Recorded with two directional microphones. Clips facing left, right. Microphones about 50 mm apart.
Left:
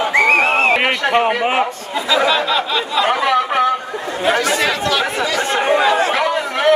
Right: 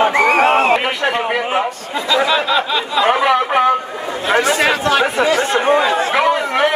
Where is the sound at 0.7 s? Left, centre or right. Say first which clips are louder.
Left 2 dB; left.